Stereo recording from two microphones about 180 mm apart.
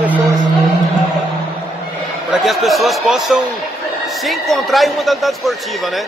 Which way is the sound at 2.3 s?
Centre (ahead or behind).